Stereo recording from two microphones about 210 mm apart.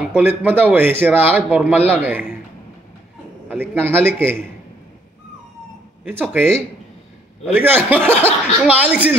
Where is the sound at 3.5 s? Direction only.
10° right (ahead or behind).